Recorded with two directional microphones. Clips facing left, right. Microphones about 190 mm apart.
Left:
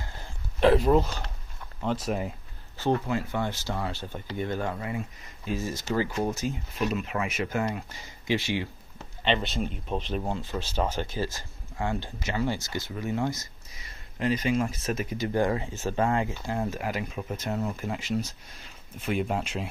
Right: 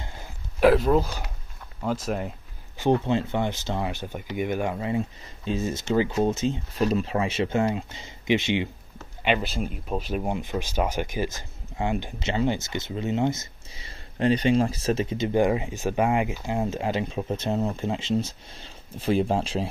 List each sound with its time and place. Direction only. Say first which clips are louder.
0.2 s a sound: right 3 dB; 5° right (ahead or behind)
1.8 s speech: right 1 dB; centre (ahead or behind)
2.8 s speech: right 4 dB; 20° right (ahead or behind)
9.2 s speech: right 2 dB; 5° right (ahead or behind); by 19.7 s 30° right (ahead or behind)